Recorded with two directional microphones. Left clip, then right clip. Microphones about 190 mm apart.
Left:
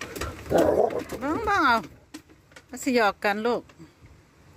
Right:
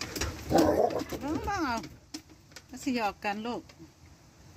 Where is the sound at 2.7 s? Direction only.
25° left (ahead or behind).